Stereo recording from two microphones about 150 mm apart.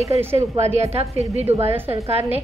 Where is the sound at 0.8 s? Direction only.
45° right (ahead or behind).